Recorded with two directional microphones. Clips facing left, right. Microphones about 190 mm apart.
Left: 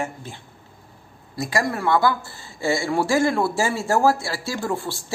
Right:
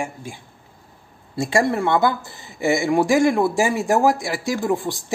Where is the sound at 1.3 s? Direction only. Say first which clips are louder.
Right 5 dB; 25° right (ahead or behind).